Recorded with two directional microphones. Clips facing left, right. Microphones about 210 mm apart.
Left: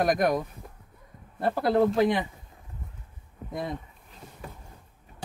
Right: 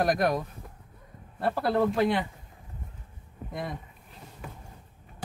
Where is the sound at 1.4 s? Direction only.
15° left (ahead or behind).